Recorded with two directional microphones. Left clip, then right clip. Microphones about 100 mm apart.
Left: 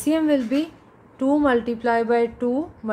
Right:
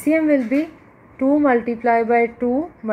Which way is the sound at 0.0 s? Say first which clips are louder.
Right 3 dB; 10° right (ahead or behind).